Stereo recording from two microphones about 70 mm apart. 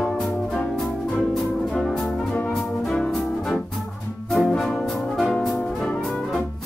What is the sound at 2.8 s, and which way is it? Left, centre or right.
Brass instrument, centre.